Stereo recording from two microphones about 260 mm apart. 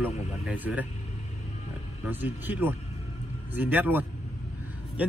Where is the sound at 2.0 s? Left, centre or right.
Centre.